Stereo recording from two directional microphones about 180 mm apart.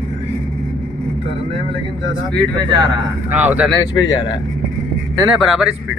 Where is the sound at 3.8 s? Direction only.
25° left (ahead or behind).